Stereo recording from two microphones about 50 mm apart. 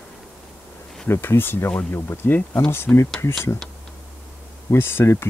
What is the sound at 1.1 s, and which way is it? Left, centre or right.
Speech, left.